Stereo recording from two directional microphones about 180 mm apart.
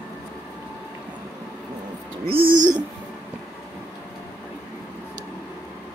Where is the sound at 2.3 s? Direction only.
35° right (ahead or behind).